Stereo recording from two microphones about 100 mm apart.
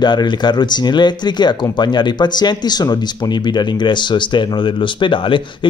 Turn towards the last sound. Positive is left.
turn(degrees=55)  # may be behind; listen again after turning